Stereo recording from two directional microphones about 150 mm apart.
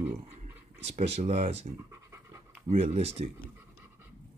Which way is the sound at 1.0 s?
45° right (ahead or behind).